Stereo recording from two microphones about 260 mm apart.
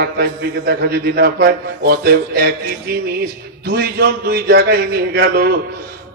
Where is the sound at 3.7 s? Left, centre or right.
Right.